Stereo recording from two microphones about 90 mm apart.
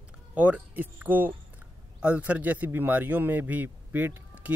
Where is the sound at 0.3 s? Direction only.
20° right (ahead or behind).